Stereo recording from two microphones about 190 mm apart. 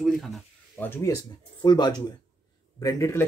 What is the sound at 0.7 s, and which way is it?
Speech, 10° left (ahead or behind).